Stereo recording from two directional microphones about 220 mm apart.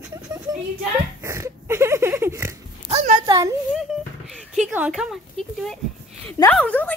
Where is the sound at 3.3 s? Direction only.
15° right (ahead or behind).